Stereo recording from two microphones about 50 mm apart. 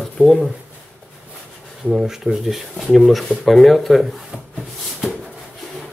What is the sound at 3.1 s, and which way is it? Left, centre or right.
Rub, centre.